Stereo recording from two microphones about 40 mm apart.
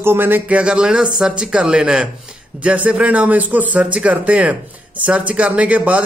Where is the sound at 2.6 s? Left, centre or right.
Right.